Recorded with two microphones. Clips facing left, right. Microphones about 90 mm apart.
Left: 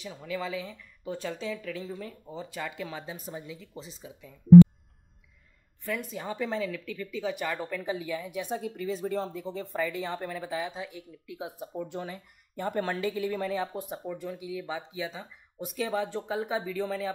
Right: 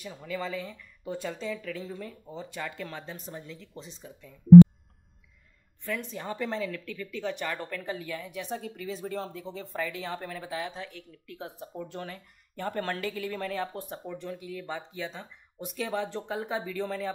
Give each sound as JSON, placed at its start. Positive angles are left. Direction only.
{"t": 0.0, "sound": "speech", "side_deg": 0}
{"t": 5.9, "sound": "speech", "side_deg": 5}